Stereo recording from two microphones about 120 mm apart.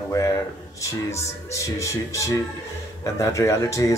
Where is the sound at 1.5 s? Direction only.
25° left (ahead or behind).